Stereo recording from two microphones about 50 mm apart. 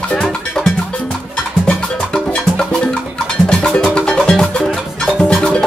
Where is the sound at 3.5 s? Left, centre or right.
Centre.